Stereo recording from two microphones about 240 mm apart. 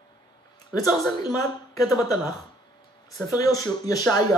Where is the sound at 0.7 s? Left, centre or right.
Centre.